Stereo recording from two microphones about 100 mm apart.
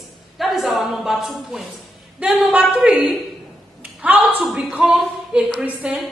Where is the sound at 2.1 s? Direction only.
10° right (ahead or behind).